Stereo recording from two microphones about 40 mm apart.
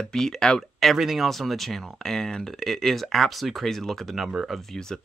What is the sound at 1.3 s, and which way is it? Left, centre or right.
Speech, centre.